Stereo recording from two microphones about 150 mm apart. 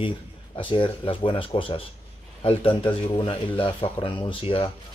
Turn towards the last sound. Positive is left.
turn(degrees=35)  # may be behind; listen again after turning